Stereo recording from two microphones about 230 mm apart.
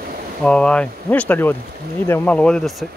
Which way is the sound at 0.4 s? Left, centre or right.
Centre.